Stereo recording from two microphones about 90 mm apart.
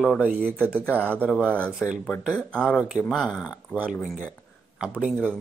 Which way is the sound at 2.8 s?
10° right (ahead or behind).